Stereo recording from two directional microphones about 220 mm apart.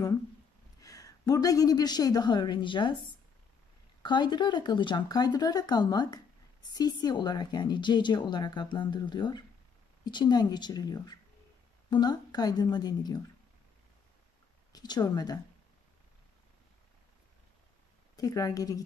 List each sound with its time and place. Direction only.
0.7 s a woman's voice: 15° left (ahead or behind)
4.0 s speech: 20° left (ahead or behind)
14.7 s speech: 20° left (ahead or behind)
18.1 s a woman's voice: 15° left (ahead or behind)